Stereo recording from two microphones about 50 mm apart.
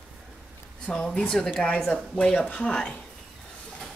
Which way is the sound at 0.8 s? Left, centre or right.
Centre.